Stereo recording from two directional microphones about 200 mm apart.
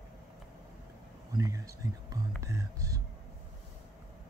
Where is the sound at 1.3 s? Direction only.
15° right (ahead or behind).